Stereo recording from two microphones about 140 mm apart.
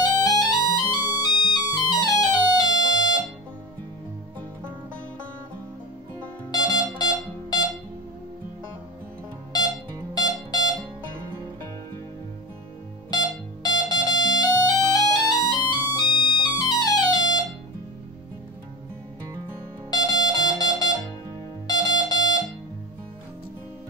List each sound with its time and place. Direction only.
0.0 s music: 30° left (ahead or behind)
6.5 s music: 30° left (ahead or behind)
10.1 s music: 30° left (ahead or behind)
13.1 s music: 30° left (ahead or behind)
19.9 s music: 30° left (ahead or behind)